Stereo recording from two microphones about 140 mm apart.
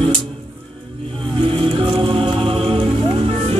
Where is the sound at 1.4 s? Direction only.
40° right (ahead or behind).